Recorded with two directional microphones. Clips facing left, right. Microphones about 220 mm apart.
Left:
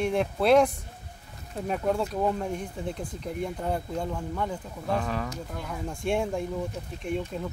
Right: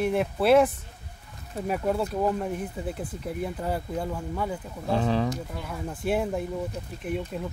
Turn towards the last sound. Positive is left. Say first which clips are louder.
# even
turn(degrees=-5)  # may be behind; listen again after turning